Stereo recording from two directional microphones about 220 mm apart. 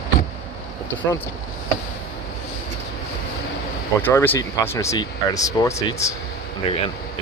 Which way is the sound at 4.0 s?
10° left (ahead or behind).